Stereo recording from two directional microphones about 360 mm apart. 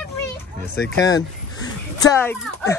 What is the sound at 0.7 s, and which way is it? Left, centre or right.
Speech, left.